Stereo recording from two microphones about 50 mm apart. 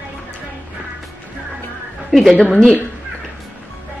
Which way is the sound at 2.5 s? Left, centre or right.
Centre.